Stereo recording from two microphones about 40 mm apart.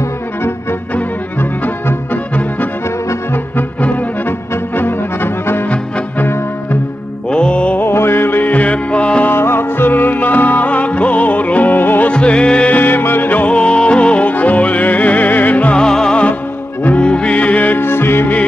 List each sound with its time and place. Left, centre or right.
4.7 s brass instrument: left
7.2 s music: left
7.8 s music: left
8.6 s music: left
9.3 s music: left
10.1 s music: left
11.7 s music: left
12.1 s music: left
12.7 s music: left
13.5 s music: left
15.7 s music: centre; by 17.7 s left
17.7 s music: left